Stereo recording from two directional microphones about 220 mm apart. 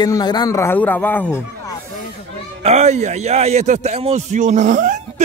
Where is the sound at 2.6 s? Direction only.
30° right (ahead or behind).